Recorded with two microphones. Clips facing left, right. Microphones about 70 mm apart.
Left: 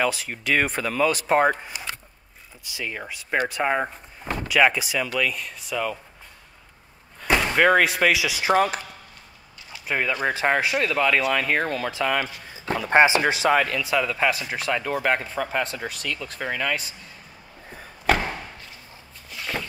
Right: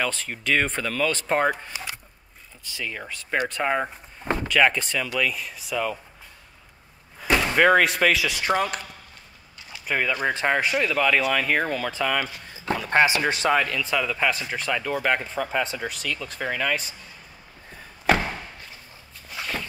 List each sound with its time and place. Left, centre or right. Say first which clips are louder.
0.0 s speech: left 3 dB; centre
2.6 s speech: left 1 dB; centre
7.2 s speech: even; centre
9.8 s speech: even; centre
12.7 s speech: left 3 dB; left; by 16.9 s centre